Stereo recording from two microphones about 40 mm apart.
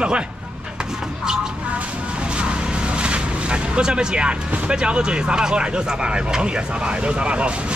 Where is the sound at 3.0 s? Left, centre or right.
Right.